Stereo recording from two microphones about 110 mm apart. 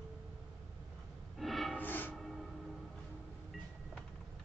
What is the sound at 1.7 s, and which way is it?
Music, 15° left (ahead or behind).